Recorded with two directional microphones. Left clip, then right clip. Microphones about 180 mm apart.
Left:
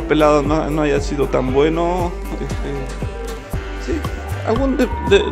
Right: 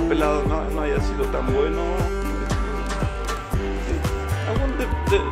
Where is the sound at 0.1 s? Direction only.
20° left (ahead or behind).